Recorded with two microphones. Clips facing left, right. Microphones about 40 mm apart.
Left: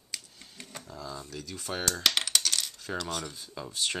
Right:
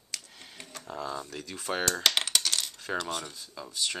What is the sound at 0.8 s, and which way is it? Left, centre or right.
Speech, right.